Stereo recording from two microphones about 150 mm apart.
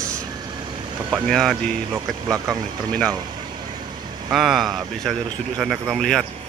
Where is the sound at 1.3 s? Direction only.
Centre (ahead or behind).